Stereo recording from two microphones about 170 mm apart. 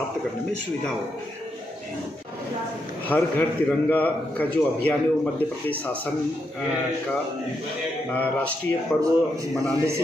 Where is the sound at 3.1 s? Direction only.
10° left (ahead or behind).